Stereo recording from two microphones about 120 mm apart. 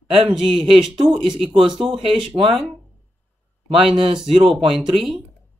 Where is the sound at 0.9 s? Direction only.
40° right (ahead or behind).